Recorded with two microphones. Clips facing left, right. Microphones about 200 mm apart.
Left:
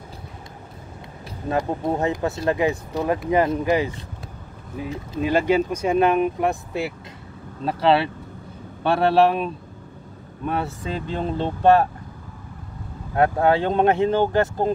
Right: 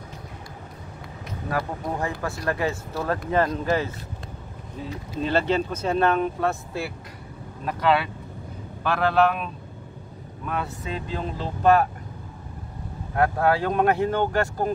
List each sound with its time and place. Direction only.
1.5 s speech: 25° left (ahead or behind)
5.2 s speech: 10° left (ahead or behind)
7.6 s speech: 30° left (ahead or behind)
13.1 s speech: 25° left (ahead or behind)